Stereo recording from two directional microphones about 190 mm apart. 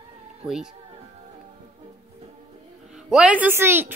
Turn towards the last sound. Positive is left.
turn(degrees=-10)  # may be behind; listen again after turning